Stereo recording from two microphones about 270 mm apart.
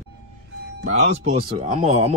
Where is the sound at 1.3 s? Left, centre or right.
Right.